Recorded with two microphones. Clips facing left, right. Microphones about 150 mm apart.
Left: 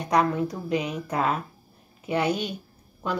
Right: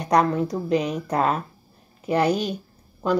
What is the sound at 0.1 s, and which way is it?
A woman's voice, 40° right (ahead or behind).